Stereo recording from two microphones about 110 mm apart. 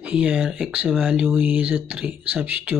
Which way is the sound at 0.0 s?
10° right (ahead or behind).